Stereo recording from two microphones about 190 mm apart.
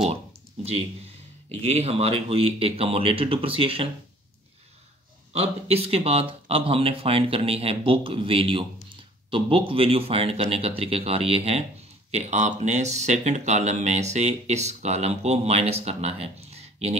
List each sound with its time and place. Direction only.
1.5 s speech: 35° right (ahead or behind)
5.3 s speech: 35° right (ahead or behind)